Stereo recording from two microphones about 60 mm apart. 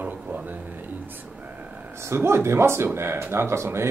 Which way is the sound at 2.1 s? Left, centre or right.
Right.